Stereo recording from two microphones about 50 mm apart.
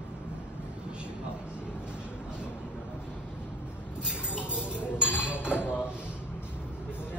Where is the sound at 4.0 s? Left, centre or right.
Centre.